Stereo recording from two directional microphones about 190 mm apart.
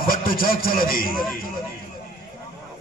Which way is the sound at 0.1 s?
50° left (ahead or behind).